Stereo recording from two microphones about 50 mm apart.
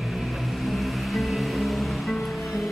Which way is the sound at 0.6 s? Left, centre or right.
Centre.